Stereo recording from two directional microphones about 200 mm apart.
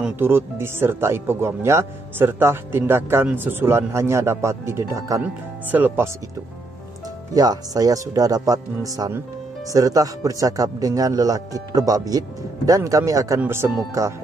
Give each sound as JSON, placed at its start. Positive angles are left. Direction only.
{"t": 0.0, "sound": "speech", "side_deg": -10}
{"t": 7.3, "sound": "speech", "side_deg": -20}